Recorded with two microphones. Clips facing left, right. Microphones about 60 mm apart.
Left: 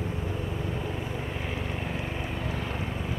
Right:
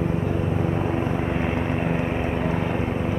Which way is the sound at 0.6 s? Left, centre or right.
Right.